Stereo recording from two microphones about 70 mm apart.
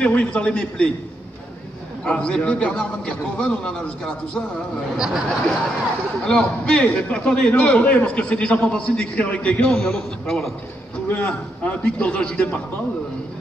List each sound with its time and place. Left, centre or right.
0.0 s a man's voice: centre
2.0 s a man's voice: centre
4.9 s speech: centre
6.2 s a man's voice: centre
9.7 s a man's voice: centre
11.1 s a man's voice: centre